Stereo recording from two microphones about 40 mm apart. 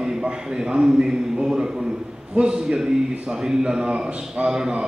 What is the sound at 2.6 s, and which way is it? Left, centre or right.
A man's voice, centre.